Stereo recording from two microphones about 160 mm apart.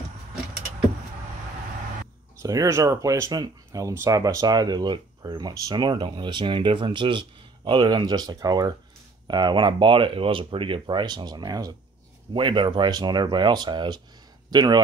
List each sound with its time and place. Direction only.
2.3 s speech: 20° right (ahead or behind)